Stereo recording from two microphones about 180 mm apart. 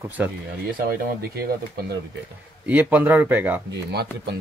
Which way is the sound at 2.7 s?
10° right (ahead or behind).